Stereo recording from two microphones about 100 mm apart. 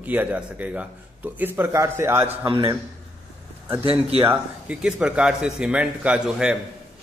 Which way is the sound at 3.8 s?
70° right (ahead or behind).